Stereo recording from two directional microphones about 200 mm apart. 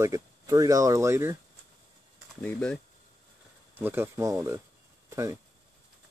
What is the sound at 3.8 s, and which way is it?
Speech, 10° right (ahead or behind).